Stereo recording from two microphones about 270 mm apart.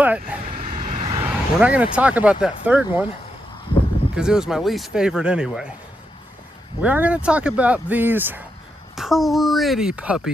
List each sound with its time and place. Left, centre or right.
0.0 s vehicle: centre
0.6 s vehicle: right
1.2 s speech: centre
4.1 s speech: centre
6.8 s speech: centre